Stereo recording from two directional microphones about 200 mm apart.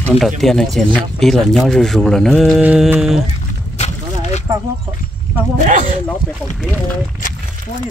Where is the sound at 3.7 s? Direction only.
35° left (ahead or behind).